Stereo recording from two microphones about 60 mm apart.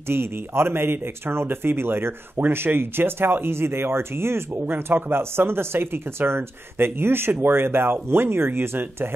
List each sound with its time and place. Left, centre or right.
0.1 s speech: right